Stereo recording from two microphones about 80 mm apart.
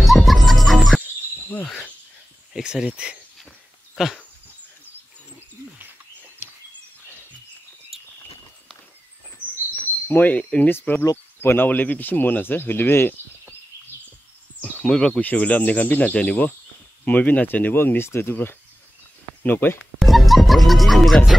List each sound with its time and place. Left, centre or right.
0.0 s music: centre
1.5 s speech: centre
2.5 s speech: centre
5.9 s wild animals: right
10.0 s speech: left
14.6 s speech: centre
20.0 s speech: centre